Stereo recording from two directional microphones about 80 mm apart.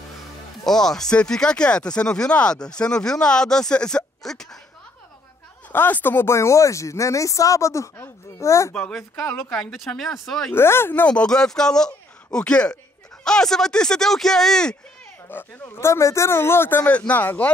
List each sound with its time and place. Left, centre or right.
0.7 s speech: centre
5.7 s speech: left
9.5 s speech: centre
10.5 s speech: left
11.1 s speech: centre
15.2 s speech: left
16.8 s speech: centre